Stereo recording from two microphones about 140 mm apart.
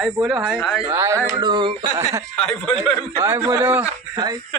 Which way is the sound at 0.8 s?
20° right (ahead or behind).